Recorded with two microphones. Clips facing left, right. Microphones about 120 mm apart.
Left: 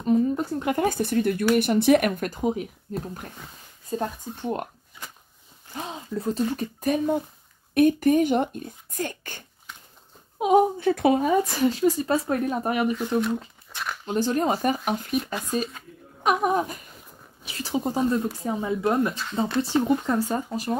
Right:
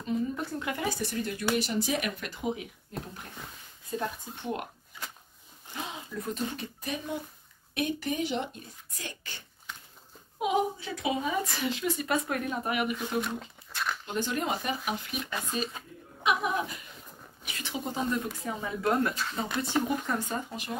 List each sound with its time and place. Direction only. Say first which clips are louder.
0.0 s speech: left 9 dB; 40° left (ahead or behind)
3.9 s speech: left 5 dB; 35° left (ahead or behind)
5.8 s speech: left 6 dB; 30° left (ahead or behind); by 9.4 s 50° left (ahead or behind)
10.4 s speech: left 9 dB; 50° left (ahead or behind)
13.2 s a sound: left 8 dB; centre (ahead or behind)
14.0 s speech: left 10 dB; 40° left (ahead or behind)
17.4 s speech: left 9 dB; 35° left (ahead or behind)